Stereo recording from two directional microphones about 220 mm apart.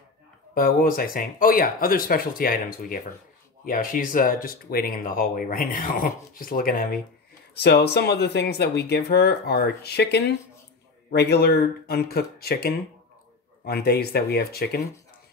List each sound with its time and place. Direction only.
0.6 s speech: 40° left (ahead or behind)